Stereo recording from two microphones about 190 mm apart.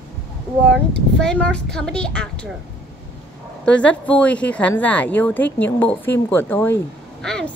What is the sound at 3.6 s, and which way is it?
A child's voice, 5° left (ahead or behind).